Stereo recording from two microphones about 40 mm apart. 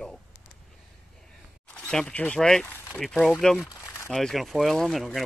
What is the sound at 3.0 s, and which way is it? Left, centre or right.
Speech, centre.